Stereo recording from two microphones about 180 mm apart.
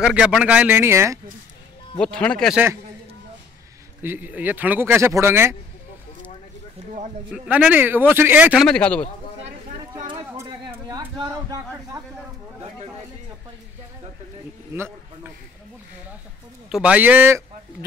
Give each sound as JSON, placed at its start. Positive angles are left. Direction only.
{"t": 0.0, "sound": "speech", "side_deg": -5}
{"t": 2.0, "sound": "speech", "side_deg": 5}
{"t": 2.5, "sound": "speech", "side_deg": -10}
{"t": 4.0, "sound": "speech", "side_deg": -10}
{"t": 7.3, "sound": "speech", "side_deg": -5}
{"t": 8.6, "sound": "speech", "side_deg": 5}
{"t": 10.3, "sound": "a sound", "side_deg": -15}
{"t": 14.7, "sound": "a sound", "side_deg": -10}
{"t": 16.6, "sound": "speech", "side_deg": -5}